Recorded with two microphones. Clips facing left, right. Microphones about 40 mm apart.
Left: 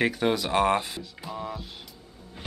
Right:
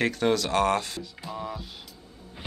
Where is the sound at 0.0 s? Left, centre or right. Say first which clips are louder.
Even; centre.